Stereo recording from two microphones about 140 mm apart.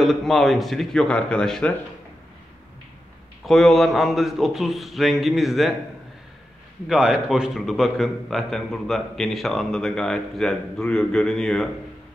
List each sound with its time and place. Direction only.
0.0 s a man's voice: centre (ahead or behind)
3.4 s a man's voice: centre (ahead or behind)
6.9 s a man's voice: 5° right (ahead or behind)